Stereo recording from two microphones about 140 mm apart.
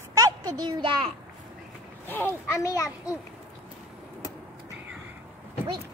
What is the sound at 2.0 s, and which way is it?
Speech, 15° left (ahead or behind).